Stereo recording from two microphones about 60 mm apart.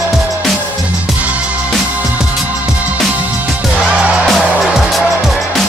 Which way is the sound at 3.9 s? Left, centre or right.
Right.